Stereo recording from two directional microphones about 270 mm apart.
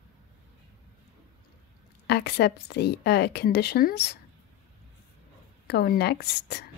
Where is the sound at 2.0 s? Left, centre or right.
Left.